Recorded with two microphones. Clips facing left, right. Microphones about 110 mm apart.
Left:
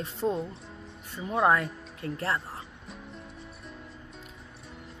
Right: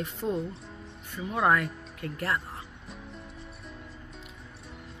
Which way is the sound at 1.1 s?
30° left (ahead or behind).